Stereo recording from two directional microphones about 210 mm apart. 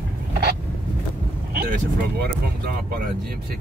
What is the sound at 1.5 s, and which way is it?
Vehicle, 45° right (ahead or behind).